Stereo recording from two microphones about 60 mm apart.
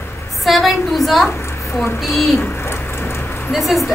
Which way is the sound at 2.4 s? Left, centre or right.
Left.